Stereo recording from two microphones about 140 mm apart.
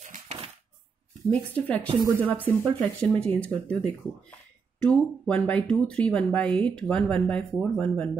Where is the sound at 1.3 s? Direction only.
10° left (ahead or behind).